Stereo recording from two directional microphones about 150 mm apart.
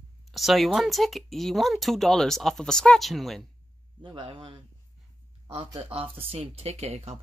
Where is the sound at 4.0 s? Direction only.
35° right (ahead or behind).